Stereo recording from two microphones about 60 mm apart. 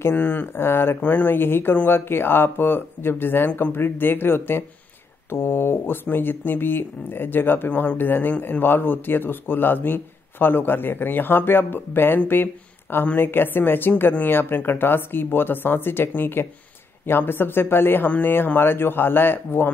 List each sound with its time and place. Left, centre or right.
0.0 s speech: left